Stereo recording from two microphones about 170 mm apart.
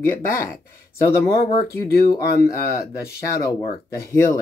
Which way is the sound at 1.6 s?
20° left (ahead or behind).